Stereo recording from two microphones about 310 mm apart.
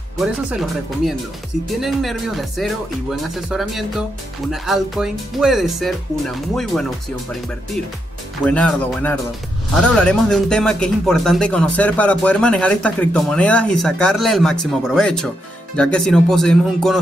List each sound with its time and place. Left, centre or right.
0.2 s speech: centre
8.5 s speech: centre